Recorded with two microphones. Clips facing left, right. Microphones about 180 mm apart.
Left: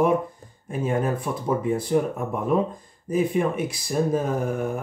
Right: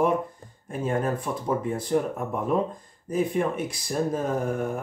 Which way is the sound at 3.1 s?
10° left (ahead or behind).